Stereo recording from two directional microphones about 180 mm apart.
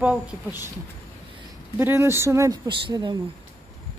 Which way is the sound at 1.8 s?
15° right (ahead or behind).